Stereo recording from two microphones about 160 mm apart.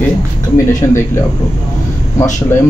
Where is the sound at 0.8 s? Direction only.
20° left (ahead or behind).